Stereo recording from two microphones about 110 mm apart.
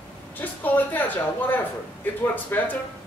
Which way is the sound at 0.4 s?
15° left (ahead or behind).